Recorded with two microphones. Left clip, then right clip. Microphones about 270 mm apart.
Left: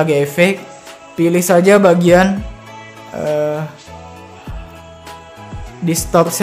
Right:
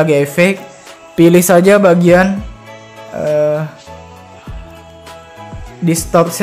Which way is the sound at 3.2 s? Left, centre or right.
Centre.